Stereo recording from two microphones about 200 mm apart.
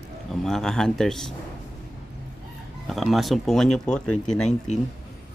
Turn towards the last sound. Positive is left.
turn(degrees=35)  # may be behind; listen again after turning